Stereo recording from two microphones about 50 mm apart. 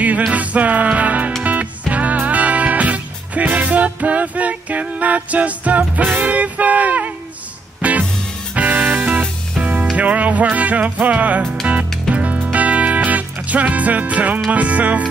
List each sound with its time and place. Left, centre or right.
0.3 s music: right